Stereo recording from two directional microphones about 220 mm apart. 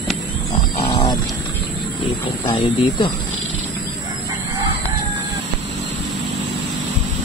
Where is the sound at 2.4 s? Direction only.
20° left (ahead or behind).